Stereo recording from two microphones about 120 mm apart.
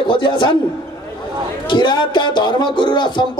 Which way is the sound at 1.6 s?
40° left (ahead or behind).